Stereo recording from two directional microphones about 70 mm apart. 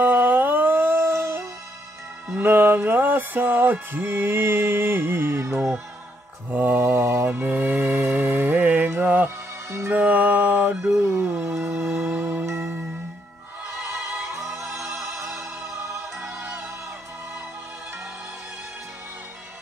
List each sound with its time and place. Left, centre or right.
0.0 s music: right
2.3 s music: right
6.5 s mantra: right
9.7 s music: right
9.9 s mantra: right
10.9 s music: right
16.3 s music: right